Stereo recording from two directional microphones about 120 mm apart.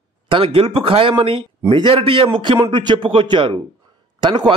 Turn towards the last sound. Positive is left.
turn(degrees=-40)  # may be behind; listen again after turning